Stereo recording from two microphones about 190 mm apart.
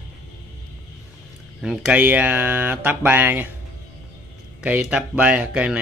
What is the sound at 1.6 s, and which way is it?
Speech, 5° right (ahead or behind).